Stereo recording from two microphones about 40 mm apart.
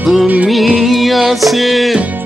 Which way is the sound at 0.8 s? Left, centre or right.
Centre.